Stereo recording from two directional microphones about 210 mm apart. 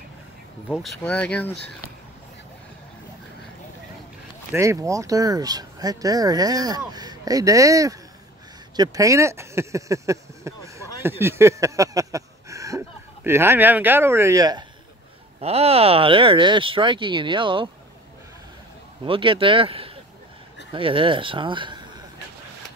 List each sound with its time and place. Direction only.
0.7 s speech: centre (ahead or behind)
4.5 s speech: 15° right (ahead or behind)
11.0 s a sound: 10° right (ahead or behind)
15.4 s speech: 30° right (ahead or behind)
19.0 s speech: 25° right (ahead or behind)